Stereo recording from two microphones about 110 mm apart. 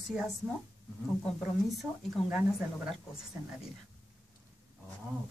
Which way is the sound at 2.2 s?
60° left (ahead or behind).